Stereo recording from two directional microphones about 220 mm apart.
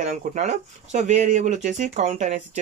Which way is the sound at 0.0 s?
30° right (ahead or behind).